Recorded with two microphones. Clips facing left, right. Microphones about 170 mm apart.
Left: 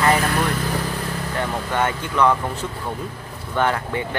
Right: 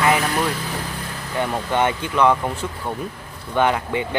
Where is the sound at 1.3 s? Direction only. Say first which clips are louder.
Right 3 dB; 20° right (ahead or behind).